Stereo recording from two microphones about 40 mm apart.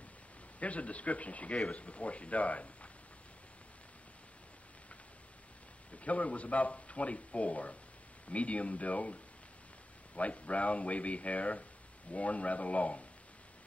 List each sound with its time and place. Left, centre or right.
0.6 s speech: left
5.9 s speech: left